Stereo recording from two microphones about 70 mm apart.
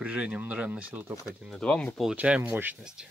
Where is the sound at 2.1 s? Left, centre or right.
Centre.